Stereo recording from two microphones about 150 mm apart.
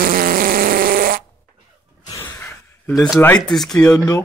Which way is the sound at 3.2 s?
5° left (ahead or behind).